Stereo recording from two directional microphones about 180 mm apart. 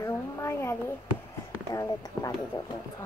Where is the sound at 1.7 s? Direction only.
20° left (ahead or behind).